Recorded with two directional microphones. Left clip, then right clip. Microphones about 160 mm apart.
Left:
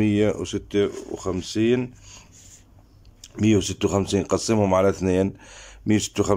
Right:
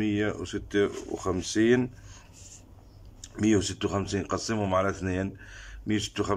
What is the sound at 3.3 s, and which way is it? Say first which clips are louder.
Speech: left 4 dB; 10° left (ahead or behind).